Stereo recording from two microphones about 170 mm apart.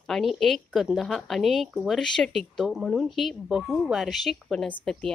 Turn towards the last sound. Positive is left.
turn(degrees=5)  # may be behind; listen again after turning